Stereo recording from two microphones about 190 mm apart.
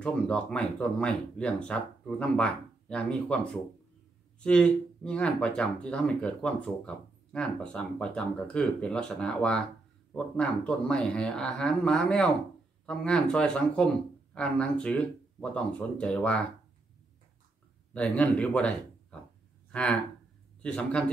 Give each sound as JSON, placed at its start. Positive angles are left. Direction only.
{"t": 0.0, "sound": "speech", "side_deg": 5}
{"t": 4.4, "sound": "speech", "side_deg": 5}
{"t": 17.9, "sound": "a man's voice", "side_deg": 5}